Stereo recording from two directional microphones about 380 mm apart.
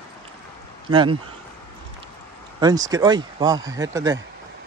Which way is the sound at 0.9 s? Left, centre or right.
Centre.